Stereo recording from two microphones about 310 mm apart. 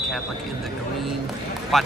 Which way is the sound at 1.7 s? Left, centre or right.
Centre.